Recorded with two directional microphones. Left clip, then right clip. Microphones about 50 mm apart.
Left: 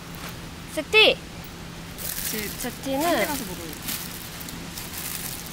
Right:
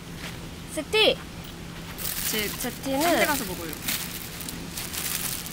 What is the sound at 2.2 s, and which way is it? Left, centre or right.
Speech, centre.